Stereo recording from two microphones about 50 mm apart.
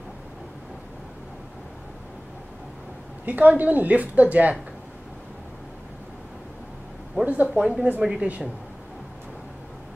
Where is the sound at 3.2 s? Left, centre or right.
Right.